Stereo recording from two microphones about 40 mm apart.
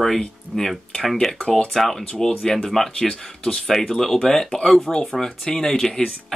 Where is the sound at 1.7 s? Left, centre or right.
Centre.